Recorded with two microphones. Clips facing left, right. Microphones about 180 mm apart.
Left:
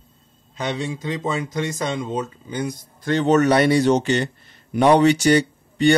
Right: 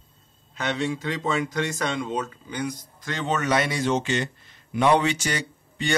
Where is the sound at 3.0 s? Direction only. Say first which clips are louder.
Left 11 dB; 40° left (ahead or behind).